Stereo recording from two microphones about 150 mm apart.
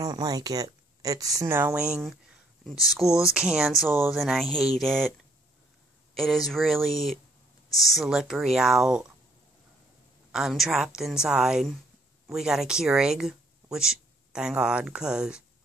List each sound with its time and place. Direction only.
0.0 s a woman's voice: 25° right (ahead or behind); by 5.1 s centre (ahead or behind)
6.1 s a woman's voice: centre (ahead or behind)
7.7 s speech: 20° left (ahead or behind)
8.0 s a woman's voice: 5° right (ahead or behind)
10.3 s a woman's voice: 5° right (ahead or behind)